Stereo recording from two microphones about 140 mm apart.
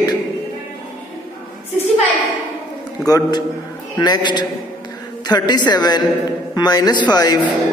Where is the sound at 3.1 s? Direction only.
30° left (ahead or behind).